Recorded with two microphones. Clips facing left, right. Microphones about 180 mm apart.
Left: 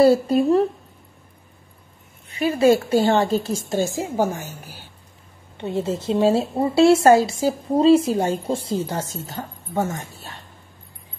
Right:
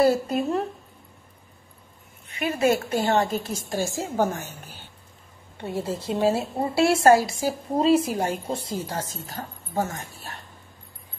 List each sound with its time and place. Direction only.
0.0 s a woman's voice: 30° left (ahead or behind)
2.2 s a woman's voice: 30° left (ahead or behind); by 4.5 s 10° left (ahead or behind)
5.6 s a woman's voice: 25° left (ahead or behind)